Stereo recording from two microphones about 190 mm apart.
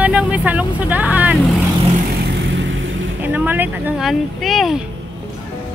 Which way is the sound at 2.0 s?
55° right (ahead or behind).